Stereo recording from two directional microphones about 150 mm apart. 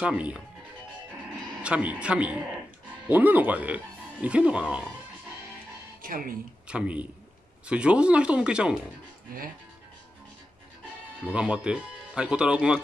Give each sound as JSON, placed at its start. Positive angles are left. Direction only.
{"t": 0.0, "sound": "speech", "side_deg": -5}
{"t": 1.6, "sound": "speech", "side_deg": -10}
{"t": 6.0, "sound": "speech", "side_deg": -70}
{"t": 6.7, "sound": "speech", "side_deg": -5}
{"t": 11.2, "sound": "speech", "side_deg": -5}